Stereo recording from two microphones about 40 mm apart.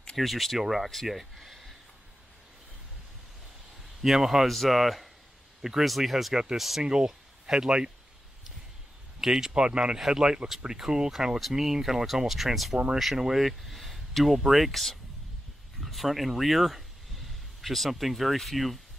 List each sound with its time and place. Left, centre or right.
0.2 s speech: centre
3.8 s speech: centre
4.5 s speech: centre
5.6 s speech: centre
6.8 s speech: right
9.2 s speech: centre
9.5 s speech: right
9.9 s speech: centre